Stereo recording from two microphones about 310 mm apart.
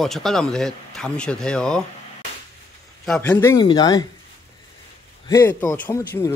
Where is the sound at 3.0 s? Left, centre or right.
Centre.